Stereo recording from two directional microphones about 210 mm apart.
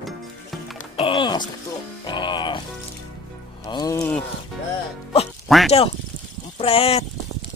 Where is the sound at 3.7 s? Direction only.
15° left (ahead or behind).